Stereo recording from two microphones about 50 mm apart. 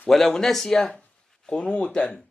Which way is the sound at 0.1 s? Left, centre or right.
Centre.